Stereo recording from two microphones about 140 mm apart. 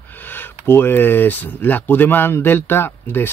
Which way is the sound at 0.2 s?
15° left (ahead or behind).